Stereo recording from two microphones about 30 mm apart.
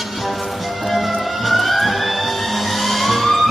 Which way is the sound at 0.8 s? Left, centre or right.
Centre.